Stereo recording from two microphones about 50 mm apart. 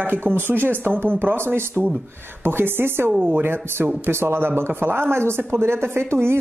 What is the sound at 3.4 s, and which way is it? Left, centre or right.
Speech, right.